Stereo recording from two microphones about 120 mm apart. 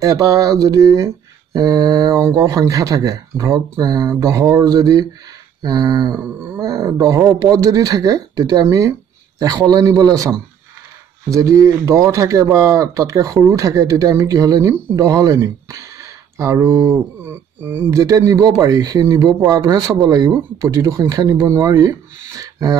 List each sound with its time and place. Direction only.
0.0 s speech: 30° right (ahead or behind)